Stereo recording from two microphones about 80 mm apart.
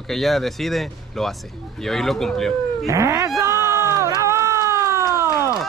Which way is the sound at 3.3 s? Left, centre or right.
Right.